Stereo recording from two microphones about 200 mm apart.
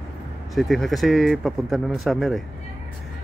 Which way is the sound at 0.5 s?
Centre (ahead or behind).